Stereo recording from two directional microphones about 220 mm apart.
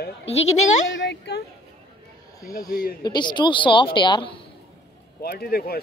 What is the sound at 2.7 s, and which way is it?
Speech, 40° left (ahead or behind).